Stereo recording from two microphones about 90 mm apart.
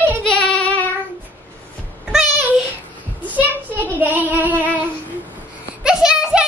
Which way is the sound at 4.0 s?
20° right (ahead or behind).